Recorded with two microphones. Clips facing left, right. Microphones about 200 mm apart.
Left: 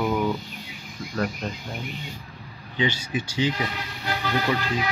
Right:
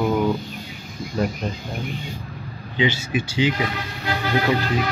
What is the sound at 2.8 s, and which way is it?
Speech, 20° right (ahead or behind).